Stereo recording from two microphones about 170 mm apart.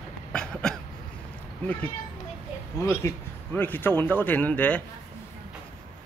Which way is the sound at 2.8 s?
15° left (ahead or behind).